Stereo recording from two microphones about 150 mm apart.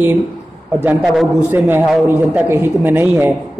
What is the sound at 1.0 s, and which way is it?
Speech, centre (ahead or behind).